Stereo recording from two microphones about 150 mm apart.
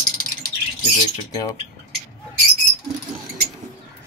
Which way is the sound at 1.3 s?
25° left (ahead or behind).